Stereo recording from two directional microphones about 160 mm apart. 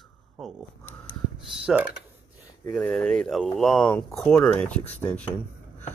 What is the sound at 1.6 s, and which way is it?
Speech, 10° right (ahead or behind).